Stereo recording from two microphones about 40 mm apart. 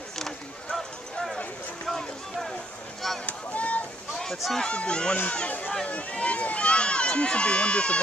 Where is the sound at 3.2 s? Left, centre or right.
Left.